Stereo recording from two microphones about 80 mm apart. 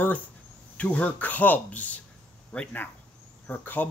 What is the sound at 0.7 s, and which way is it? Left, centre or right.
Speech, centre.